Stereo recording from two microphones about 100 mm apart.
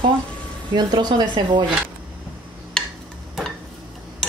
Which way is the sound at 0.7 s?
50° right (ahead or behind).